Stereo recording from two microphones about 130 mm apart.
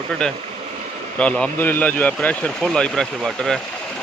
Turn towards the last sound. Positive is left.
turn(degrees=5)  # may be behind; listen again after turning